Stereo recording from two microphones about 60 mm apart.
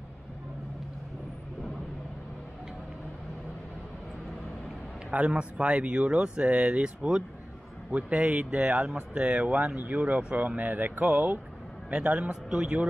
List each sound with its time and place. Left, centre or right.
5.1 s a man's voice: right